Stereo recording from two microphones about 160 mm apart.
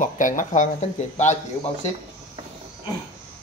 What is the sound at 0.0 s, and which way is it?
Speech, 55° left (ahead or behind).